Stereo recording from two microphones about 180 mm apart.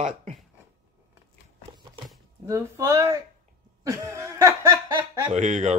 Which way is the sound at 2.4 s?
20° right (ahead or behind).